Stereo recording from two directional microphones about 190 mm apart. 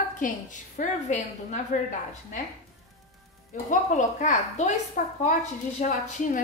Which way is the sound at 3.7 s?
40° left (ahead or behind).